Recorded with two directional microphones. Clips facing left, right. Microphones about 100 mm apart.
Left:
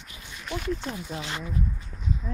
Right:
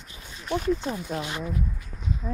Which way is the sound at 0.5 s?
50° right (ahead or behind).